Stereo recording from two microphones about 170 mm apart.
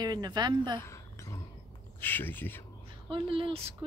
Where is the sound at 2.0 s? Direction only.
10° left (ahead or behind).